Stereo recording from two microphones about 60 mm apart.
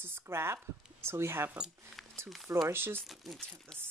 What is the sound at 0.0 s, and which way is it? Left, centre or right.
Speech, right.